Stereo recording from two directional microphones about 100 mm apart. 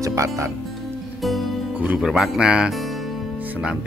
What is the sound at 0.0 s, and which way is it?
Speech, 30° right (ahead or behind).